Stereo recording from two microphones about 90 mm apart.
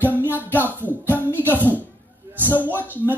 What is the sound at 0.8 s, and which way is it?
Music, 20° left (ahead or behind).